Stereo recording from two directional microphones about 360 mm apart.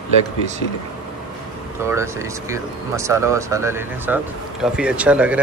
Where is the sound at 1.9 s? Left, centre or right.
Centre.